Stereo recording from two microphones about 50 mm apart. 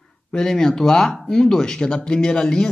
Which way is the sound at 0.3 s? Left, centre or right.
Centre.